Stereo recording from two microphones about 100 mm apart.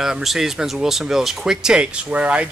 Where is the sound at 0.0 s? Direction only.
5° right (ahead or behind).